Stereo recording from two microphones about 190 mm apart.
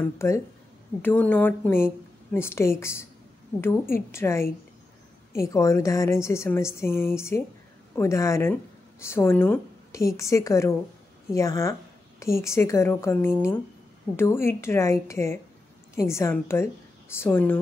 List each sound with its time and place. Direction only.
0.0 s a woman's voice: 15° left (ahead or behind)